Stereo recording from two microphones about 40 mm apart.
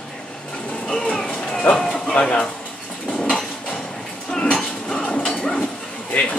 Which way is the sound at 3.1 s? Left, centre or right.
Centre.